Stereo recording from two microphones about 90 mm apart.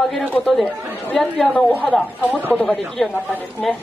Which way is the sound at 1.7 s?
15° left (ahead or behind).